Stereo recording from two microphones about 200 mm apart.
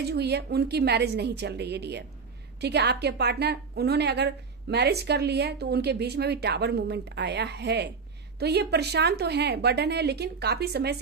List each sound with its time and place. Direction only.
0.0 s a woman's voice: 55° right (ahead or behind)